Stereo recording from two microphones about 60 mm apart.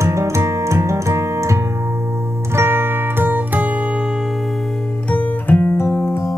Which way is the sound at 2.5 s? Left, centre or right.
Right.